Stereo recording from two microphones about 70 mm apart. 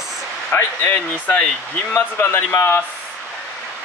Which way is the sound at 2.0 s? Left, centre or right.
Left.